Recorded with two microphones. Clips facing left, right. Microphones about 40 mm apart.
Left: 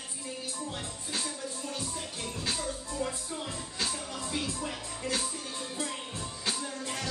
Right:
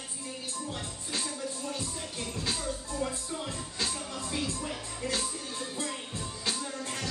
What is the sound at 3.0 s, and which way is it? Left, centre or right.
Music, centre.